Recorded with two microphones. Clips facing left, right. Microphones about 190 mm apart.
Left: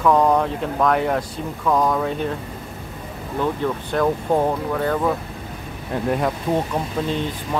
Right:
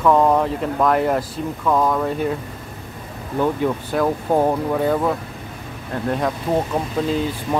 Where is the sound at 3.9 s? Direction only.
5° right (ahead or behind).